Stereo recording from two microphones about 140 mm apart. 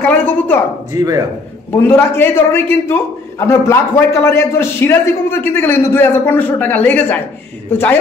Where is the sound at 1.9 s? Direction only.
15° left (ahead or behind).